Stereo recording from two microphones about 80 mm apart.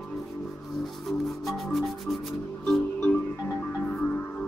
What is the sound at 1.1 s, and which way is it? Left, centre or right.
Music, centre.